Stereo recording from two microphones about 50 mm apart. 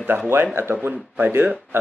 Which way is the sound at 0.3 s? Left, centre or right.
Right.